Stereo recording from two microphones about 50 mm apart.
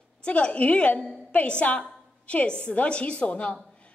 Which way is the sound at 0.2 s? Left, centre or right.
Left.